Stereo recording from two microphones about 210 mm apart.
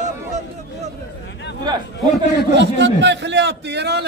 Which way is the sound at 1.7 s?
20° right (ahead or behind).